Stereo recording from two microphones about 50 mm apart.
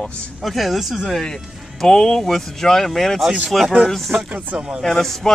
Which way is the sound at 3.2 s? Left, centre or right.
Centre.